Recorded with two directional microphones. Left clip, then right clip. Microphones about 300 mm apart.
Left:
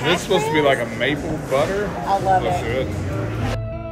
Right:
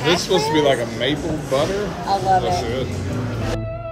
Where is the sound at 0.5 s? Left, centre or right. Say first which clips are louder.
Even; centre.